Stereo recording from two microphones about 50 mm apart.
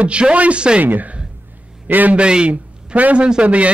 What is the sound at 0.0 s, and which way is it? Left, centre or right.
Speech, right.